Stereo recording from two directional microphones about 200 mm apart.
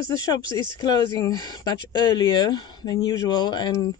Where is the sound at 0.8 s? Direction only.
20° left (ahead or behind).